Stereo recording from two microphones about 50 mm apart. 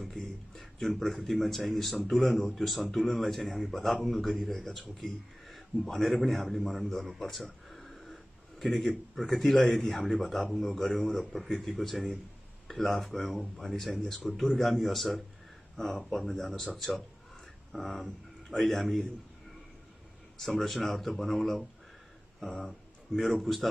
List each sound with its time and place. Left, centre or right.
0.0 s speech: centre
7.7 s a sound: centre
9.3 s speech: centre
10.9 s a man's voice: left
11.1 s speech: centre
20.3 s a man's voice: centre